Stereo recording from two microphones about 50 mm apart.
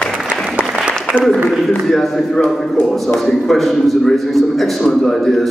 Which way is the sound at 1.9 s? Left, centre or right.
Centre.